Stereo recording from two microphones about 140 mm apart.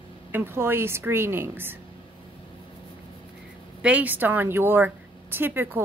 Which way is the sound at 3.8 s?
10° right (ahead or behind).